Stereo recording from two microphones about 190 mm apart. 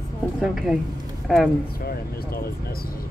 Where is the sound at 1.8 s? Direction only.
55° left (ahead or behind).